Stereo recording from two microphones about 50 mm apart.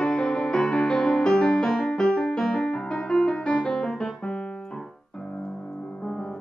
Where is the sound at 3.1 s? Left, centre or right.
Centre.